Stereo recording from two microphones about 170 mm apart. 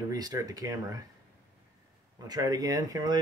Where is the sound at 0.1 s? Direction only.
20° right (ahead or behind).